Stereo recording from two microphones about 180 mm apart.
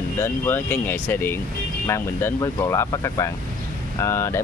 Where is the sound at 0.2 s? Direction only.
10° left (ahead or behind).